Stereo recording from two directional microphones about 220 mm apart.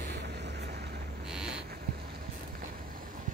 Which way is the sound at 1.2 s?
5° right (ahead or behind).